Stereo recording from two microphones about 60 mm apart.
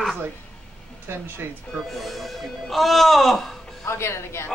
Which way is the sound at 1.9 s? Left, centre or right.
Centre.